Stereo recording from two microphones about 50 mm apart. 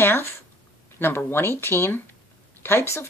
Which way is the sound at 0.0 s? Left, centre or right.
Left.